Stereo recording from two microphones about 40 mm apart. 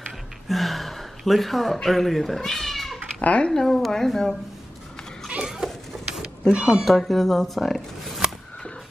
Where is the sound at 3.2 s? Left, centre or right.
Left.